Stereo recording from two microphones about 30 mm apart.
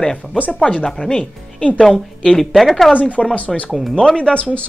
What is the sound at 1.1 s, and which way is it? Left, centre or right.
Speech, left.